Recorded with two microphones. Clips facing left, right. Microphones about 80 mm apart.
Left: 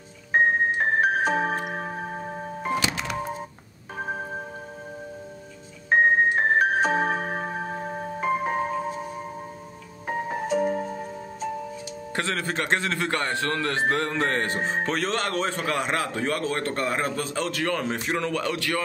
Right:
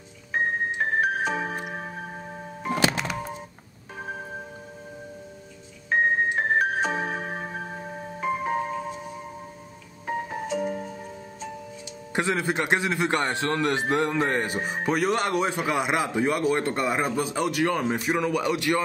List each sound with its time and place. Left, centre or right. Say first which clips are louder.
0.3 s music: left 5 dB; left
5.9 s music: left 3 dB; left
10.0 s music: left 2 dB; left
12.2 s a man's voice: right 3 dB; centre